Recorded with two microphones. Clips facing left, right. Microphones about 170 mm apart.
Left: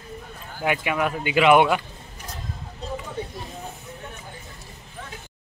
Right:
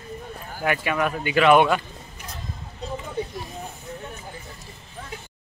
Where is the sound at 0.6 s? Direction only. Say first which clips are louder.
Even; 15° left (ahead or behind).